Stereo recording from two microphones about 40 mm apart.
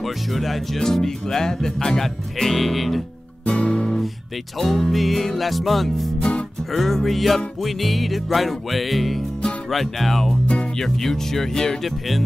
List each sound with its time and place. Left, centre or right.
0.0 s music: centre
0.7 s music: centre
3.4 s music: left
4.6 s music: centre
10.4 s music: left
10.8 s music: centre